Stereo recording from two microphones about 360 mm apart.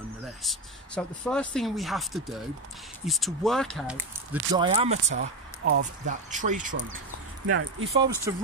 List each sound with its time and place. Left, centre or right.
0.4 s speech: centre
5.1 s speech: right
5.8 s speech: right
7.4 s speech: right
8.3 s speech: centre